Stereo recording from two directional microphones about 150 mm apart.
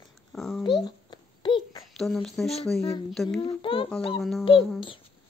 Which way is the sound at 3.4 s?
35° left (ahead or behind).